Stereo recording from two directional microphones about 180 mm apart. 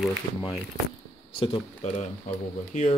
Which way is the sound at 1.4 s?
30° left (ahead or behind).